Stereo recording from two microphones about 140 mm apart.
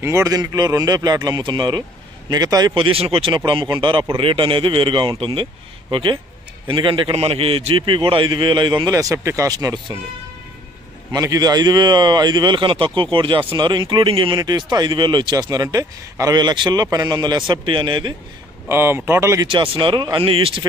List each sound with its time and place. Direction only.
0.0 s speech: 20° right (ahead or behind)
2.7 s speech: 40° right (ahead or behind)
11.1 s speech: 25° right (ahead or behind)
18.7 s speech: 15° right (ahead or behind)
19.4 s speech: 35° right (ahead or behind)